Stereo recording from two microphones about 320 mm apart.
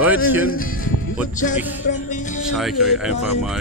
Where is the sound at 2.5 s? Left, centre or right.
Centre.